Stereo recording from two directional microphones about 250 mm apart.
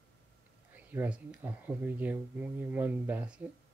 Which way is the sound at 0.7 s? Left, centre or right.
Centre.